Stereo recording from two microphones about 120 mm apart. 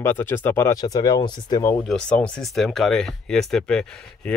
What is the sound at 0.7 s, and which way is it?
Speech, 35° left (ahead or behind).